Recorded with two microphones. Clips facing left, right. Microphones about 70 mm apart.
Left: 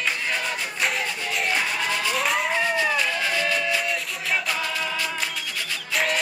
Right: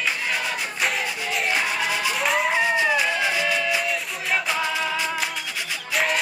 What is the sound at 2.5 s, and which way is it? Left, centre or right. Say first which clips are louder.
Music: right 2 dB; centre.